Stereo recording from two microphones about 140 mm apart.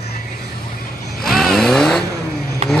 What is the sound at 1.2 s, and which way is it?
Vehicle, centre (ahead or behind).